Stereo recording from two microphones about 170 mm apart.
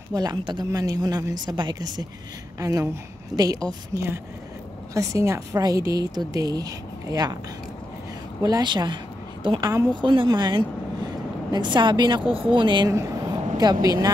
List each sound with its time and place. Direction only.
0.1 s a woman's voice: 25° right (ahead or behind)
8.4 s a woman's voice: 20° right (ahead or behind)